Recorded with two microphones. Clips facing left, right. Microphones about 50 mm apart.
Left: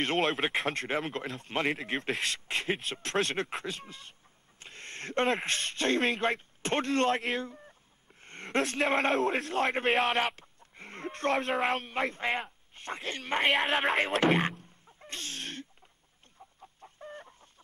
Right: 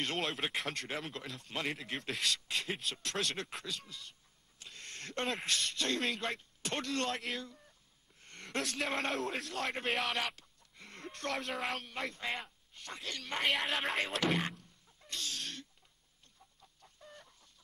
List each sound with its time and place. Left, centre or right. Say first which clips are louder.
0.2 s speech: left 8 dB; left
4.6 s a sound: left 5 dB; left
5.4 s speech: left 4 dB; left
6.0 s speech: left 8 dB; left
7.3 s a sound: left 8 dB; left
9.1 s speech: left 9 dB; left
9.4 s speech: left 8 dB; left
9.8 s speech: left 7 dB; left
10.1 s a sound: left 7 dB; left
11.3 s speech: left 8 dB; left
11.8 s speech: left 8 dB; left
13.5 s speech: left 6 dB; left
14.2 s a sound: left 7 dB; left
16.5 s chicken: left 12 dB; left